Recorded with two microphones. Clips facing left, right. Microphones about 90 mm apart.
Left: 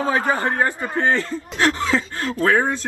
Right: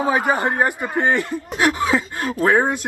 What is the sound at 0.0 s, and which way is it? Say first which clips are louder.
Speech: right 2 dB; 15° right (ahead or behind).